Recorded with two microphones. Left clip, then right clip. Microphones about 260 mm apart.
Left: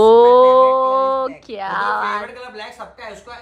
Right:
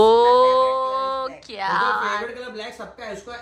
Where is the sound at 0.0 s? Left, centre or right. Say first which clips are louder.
Left 5 dB; centre.